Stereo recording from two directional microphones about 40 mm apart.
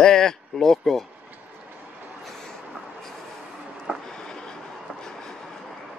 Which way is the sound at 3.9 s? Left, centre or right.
Centre.